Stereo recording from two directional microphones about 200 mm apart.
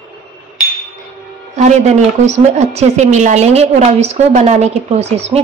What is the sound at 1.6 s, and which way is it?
A woman's voice, 35° right (ahead or behind).